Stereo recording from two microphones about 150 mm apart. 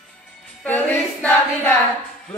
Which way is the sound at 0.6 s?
10° left (ahead or behind).